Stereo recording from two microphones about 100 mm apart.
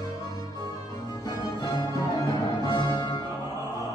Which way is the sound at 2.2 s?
40° left (ahead or behind).